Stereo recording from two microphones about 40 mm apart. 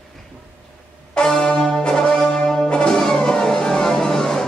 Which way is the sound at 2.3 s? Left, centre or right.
Centre.